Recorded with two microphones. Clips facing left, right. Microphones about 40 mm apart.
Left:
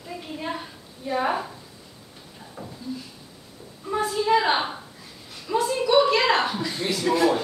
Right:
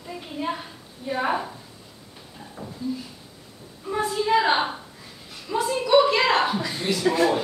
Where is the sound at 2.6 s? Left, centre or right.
Left.